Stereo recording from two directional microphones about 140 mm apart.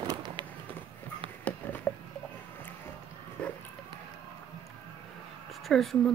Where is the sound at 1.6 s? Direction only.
15° left (ahead or behind).